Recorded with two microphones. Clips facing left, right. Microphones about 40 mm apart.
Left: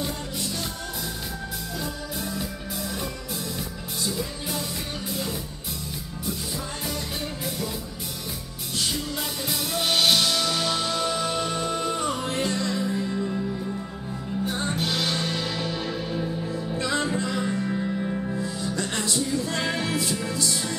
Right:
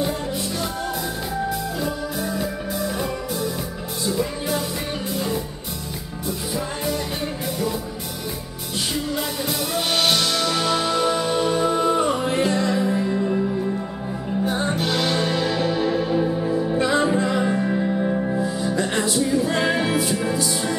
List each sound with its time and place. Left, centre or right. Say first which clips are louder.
2.1 s music: right 6 dB; centre
9.1 s music: right 5 dB; centre; by 13.4 s right
14.4 s music: right 5 dB; centre